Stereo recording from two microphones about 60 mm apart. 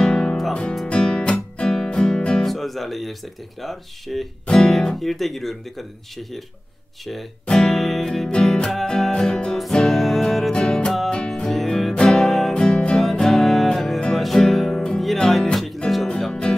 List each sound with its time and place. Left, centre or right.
0.0 s music: centre
2.4 s speech: centre
7.4 s music: centre
10.5 s music: centre